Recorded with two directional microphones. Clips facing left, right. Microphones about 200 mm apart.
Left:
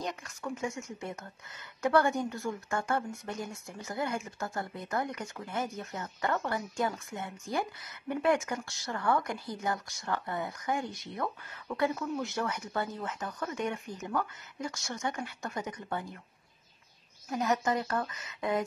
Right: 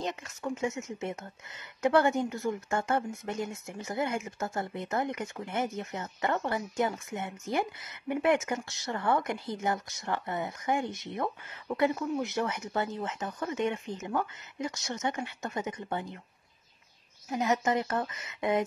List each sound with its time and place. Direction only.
0.0 s speech: 20° right (ahead or behind)
17.3 s speech: 20° right (ahead or behind)